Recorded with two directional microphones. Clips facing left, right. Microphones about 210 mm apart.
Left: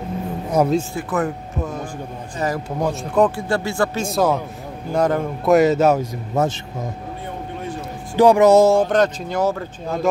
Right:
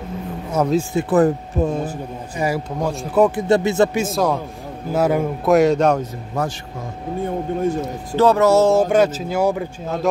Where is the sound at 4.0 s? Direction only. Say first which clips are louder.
Even; centre (ahead or behind).